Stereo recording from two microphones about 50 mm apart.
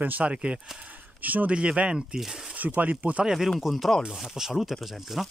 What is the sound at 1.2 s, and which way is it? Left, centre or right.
Speech, right.